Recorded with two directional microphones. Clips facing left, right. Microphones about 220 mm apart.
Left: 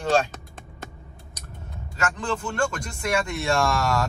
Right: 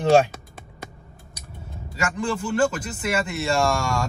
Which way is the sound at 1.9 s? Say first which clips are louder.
Right 2 dB; 10° right (ahead or behind).